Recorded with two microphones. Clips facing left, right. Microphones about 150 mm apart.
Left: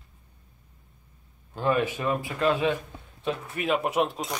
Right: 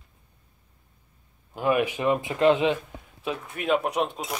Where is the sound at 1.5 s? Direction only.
10° right (ahead or behind).